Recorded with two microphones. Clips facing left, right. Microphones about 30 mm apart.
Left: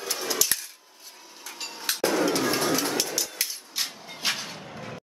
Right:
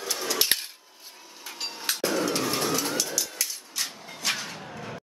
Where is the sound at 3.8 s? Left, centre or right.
Left.